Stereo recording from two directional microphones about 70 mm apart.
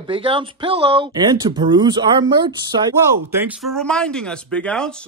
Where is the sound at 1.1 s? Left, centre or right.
Right.